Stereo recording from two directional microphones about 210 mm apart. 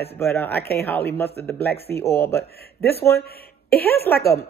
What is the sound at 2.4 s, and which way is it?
A man's voice, 50° left (ahead or behind).